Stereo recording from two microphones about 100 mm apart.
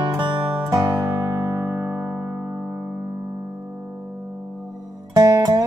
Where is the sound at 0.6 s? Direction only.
30° right (ahead or behind).